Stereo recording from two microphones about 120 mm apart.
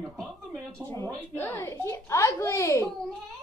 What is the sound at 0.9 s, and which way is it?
A woman's voice, 20° left (ahead or behind).